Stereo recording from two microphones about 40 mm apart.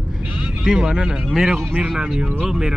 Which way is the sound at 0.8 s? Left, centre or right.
Centre.